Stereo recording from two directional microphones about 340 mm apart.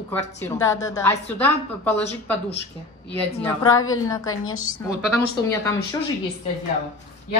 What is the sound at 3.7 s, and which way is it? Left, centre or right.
Speech, left.